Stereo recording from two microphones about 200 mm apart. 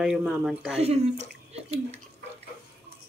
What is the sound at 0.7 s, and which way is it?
Speech, 30° right (ahead or behind).